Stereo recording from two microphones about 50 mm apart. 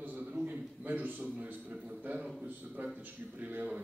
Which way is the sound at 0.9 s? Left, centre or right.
Right.